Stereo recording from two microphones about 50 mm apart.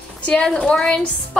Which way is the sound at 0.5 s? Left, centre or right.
Left.